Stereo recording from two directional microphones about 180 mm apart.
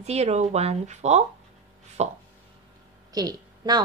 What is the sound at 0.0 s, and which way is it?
Speech, 35° right (ahead or behind).